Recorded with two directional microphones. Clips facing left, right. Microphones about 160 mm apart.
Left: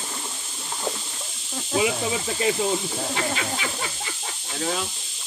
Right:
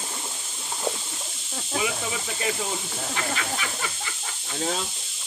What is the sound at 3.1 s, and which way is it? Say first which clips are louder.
Speech: even; 25° left (ahead or behind).